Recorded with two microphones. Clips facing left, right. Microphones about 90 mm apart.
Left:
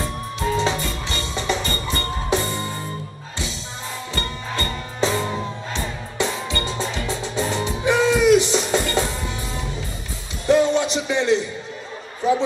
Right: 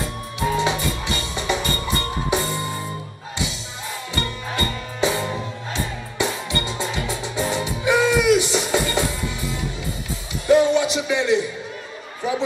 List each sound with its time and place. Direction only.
0.4 s music: 15° right (ahead or behind)
4.1 s music: 15° right (ahead or behind)
10.4 s music: 15° right (ahead or behind)